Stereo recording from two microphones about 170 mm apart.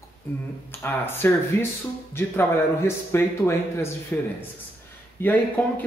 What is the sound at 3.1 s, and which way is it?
Speech, 15° left (ahead or behind).